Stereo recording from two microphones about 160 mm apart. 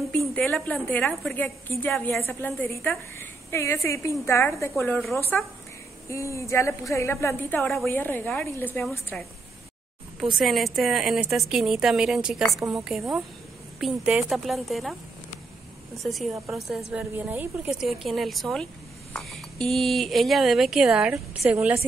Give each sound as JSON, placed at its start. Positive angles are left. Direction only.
{"t": 0.3, "sound": "a woman's voice", "side_deg": 5}
{"t": 10.3, "sound": "a woman's voice", "side_deg": 0}
{"t": 16.0, "sound": "a woman's voice", "side_deg": 0}
{"t": 17.1, "sound": "a woman's voice", "side_deg": -10}
{"t": 21.1, "sound": "a woman's voice", "side_deg": -15}